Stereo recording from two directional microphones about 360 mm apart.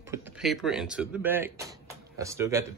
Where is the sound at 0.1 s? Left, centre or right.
Centre.